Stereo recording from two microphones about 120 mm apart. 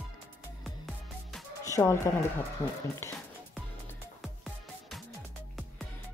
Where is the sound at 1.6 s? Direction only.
25° left (ahead or behind).